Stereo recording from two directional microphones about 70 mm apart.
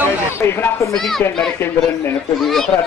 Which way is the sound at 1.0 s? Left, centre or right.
Centre.